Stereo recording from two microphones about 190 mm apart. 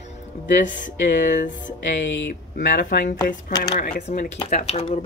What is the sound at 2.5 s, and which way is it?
Speech, 50° left (ahead or behind).